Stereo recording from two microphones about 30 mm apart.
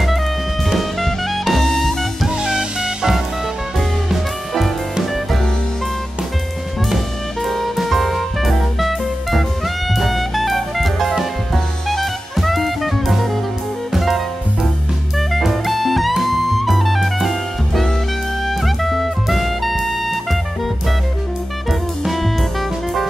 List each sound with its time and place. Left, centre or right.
0.7 s music: centre
2.2 s music: right
7.4 s music: centre
9.9 s drum kit: centre
13.9 s jazz: centre
16.1 s music: centre
22.0 s music: centre